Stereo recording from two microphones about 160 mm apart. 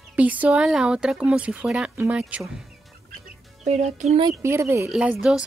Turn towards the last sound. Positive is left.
turn(degrees=-5)  # may be behind; listen again after turning